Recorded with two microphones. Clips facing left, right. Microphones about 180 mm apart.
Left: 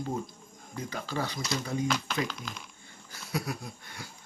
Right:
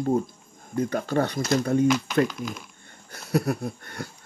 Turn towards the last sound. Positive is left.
turn(degrees=-55)  # may be behind; listen again after turning